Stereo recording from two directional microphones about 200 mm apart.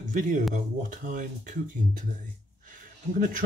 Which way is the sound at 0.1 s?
40° right (ahead or behind).